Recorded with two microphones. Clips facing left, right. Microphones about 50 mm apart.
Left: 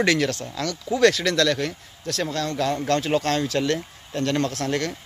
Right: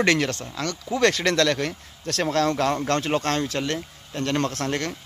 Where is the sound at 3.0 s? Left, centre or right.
Right.